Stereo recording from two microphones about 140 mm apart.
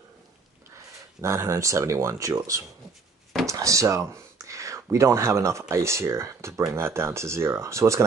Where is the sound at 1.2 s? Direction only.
20° right (ahead or behind).